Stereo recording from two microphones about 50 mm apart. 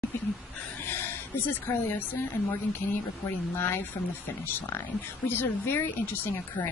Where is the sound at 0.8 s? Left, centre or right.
Left.